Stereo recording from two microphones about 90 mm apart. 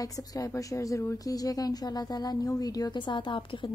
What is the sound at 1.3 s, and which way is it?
Speech, 45° left (ahead or behind).